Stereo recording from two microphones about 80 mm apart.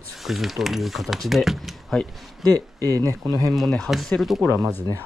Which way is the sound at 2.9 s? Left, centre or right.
Right.